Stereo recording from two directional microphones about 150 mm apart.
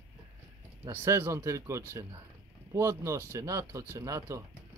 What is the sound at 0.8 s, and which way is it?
A man's voice, 15° right (ahead or behind).